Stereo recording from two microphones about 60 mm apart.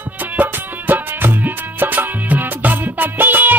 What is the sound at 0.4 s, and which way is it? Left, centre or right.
Music, right.